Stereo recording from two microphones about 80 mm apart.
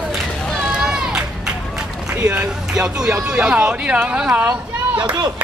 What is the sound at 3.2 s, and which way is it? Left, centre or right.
Speech, centre.